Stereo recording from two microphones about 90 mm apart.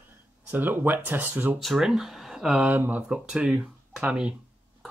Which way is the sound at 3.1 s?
10° right (ahead or behind).